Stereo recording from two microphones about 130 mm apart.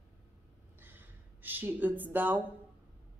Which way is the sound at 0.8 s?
15° right (ahead or behind).